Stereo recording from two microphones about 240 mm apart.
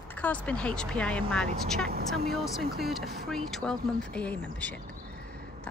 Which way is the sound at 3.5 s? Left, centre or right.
Centre.